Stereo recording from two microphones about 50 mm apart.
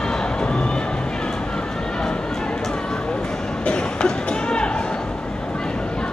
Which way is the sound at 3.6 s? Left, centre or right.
Centre.